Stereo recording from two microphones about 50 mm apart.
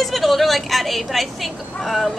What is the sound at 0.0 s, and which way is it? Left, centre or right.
Speech, centre.